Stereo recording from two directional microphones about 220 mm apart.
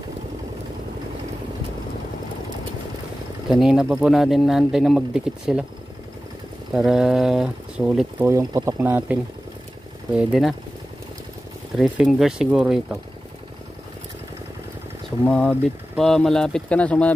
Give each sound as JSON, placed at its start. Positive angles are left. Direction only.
{"t": 3.4, "sound": "speech", "side_deg": 0}
{"t": 6.7, "sound": "speech", "side_deg": -5}
{"t": 8.3, "sound": "speech", "side_deg": -15}
{"t": 11.8, "sound": "speech", "side_deg": 0}
{"t": 15.0, "sound": "speech", "side_deg": 5}